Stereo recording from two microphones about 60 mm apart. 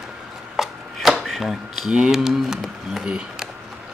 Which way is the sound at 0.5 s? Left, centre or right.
Centre.